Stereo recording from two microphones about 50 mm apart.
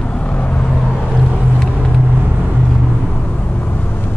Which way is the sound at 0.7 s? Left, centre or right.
Centre.